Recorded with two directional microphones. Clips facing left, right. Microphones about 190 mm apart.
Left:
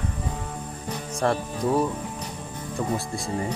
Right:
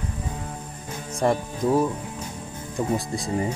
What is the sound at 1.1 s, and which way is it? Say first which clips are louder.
Speech: right 2 dB; 5° right (ahead or behind).